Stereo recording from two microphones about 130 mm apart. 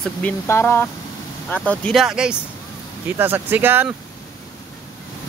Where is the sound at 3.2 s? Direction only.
15° right (ahead or behind).